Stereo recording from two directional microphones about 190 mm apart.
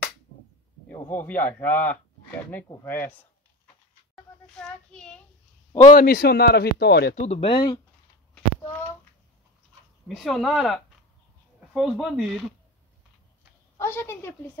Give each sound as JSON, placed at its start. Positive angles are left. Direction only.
{"t": 1.0, "sound": "speech", "side_deg": 10}
{"t": 4.1, "sound": "child singing", "side_deg": 5}
{"t": 5.7, "sound": "a man's voice", "side_deg": 20}
{"t": 5.9, "sound": "speech", "side_deg": 50}
{"t": 7.2, "sound": "speech", "side_deg": 30}
{"t": 10.0, "sound": "speech", "side_deg": 0}
{"t": 13.7, "sound": "speech", "side_deg": 10}